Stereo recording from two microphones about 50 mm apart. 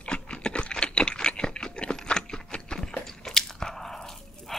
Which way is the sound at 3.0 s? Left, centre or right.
Centre.